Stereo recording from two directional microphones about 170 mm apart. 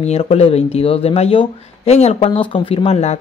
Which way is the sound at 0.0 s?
35° left (ahead or behind).